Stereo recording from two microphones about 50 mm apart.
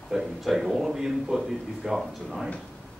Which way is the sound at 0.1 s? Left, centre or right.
Centre.